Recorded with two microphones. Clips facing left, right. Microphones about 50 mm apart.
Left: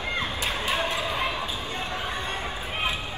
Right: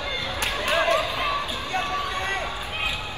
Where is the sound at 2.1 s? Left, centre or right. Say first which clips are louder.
Right 4 dB; right.